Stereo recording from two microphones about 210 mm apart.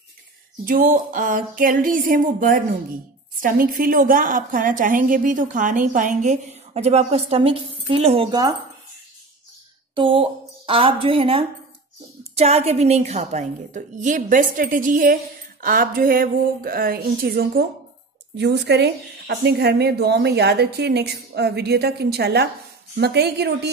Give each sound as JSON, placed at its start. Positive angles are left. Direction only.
{"t": 0.7, "sound": "a woman's voice", "side_deg": -40}
{"t": 9.9, "sound": "a woman's voice", "side_deg": -25}